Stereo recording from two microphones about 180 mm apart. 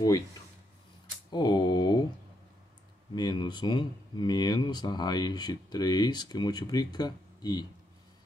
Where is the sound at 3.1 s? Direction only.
25° left (ahead or behind).